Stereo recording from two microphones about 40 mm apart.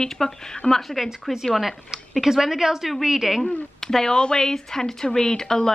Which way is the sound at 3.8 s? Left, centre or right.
Centre.